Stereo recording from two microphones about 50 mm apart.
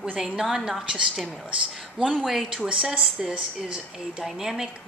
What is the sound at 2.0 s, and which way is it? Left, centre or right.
Speech, centre.